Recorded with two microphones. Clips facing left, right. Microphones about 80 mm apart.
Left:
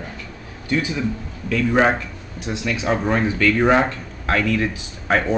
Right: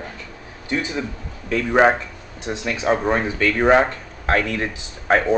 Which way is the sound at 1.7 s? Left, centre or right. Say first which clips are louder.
Right 2 dB; centre.